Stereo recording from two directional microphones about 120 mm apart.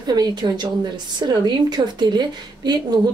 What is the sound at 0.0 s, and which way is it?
Speech, 35° right (ahead or behind).